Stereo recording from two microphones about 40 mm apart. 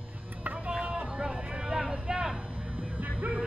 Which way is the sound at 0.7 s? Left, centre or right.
Centre.